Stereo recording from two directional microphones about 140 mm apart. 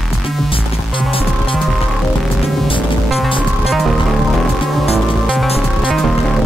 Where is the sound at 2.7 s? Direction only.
40° left (ahead or behind).